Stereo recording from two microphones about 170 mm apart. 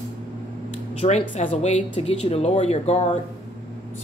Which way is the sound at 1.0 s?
40° left (ahead or behind).